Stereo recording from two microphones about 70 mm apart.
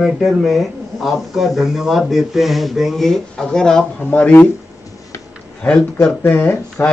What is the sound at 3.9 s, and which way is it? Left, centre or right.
Speech, left.